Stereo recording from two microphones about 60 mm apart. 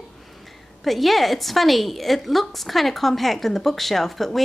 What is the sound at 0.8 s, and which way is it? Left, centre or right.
A woman's voice, centre.